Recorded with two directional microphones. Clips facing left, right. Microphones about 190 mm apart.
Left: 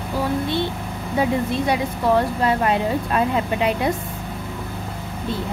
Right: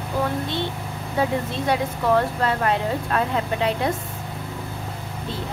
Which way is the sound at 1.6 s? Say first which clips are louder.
Right 2 dB; 15° left (ahead or behind).